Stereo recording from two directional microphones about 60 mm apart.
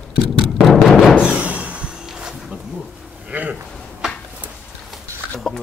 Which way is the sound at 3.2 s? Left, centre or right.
Right.